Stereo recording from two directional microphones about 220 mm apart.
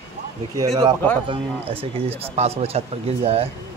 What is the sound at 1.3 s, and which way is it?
Speech, 25° right (ahead or behind).